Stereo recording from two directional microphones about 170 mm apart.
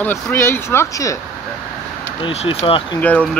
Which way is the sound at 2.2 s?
35° left (ahead or behind).